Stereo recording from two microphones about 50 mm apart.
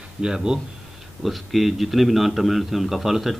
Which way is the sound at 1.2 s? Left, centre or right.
Centre.